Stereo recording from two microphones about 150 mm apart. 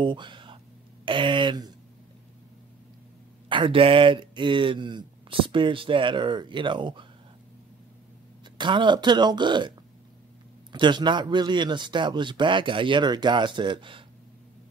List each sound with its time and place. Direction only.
0.0 s speech: 30° right (ahead or behind)
3.4 s speech: 35° right (ahead or behind)
8.5 s speech: 30° right (ahead or behind)